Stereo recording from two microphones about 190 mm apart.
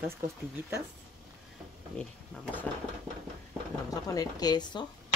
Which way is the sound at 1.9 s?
5° left (ahead or behind).